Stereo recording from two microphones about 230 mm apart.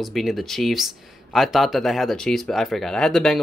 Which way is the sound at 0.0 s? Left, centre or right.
Centre.